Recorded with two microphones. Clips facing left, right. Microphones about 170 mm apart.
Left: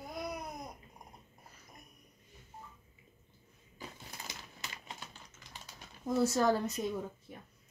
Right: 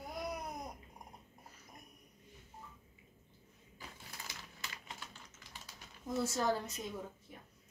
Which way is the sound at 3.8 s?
20° left (ahead or behind).